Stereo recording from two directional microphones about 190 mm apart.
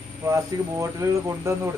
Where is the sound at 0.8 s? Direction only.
15° right (ahead or behind).